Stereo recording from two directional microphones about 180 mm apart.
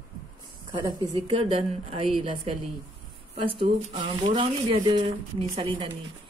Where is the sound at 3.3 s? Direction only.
30° right (ahead or behind).